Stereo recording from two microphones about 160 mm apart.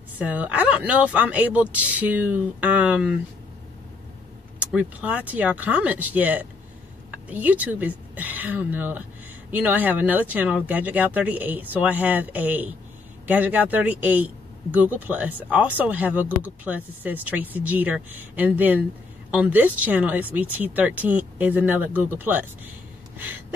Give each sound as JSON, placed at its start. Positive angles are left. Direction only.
{"t": 0.2, "sound": "speech", "side_deg": -10}
{"t": 4.6, "sound": "speech", "side_deg": -10}
{"t": 23.1, "sound": "gasp", "side_deg": -10}